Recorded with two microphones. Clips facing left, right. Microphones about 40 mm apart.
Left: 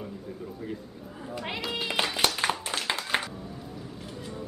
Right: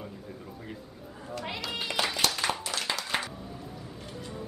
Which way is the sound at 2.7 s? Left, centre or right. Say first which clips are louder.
Left 3 dB; left.